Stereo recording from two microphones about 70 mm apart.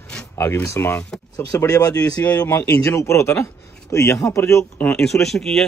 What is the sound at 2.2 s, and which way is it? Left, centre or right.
Speech, left.